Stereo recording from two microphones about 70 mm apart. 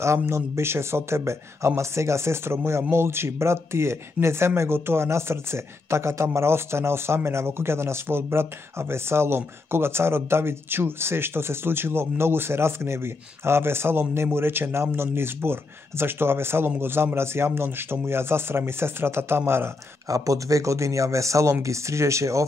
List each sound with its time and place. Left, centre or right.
0.0 s speech: right
20.1 s speech: right